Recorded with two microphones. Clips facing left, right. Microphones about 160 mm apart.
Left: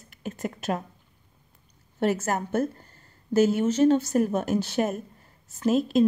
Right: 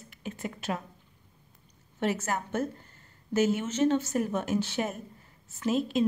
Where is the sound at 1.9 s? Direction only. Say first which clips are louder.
Left 5 dB; 40° left (ahead or behind).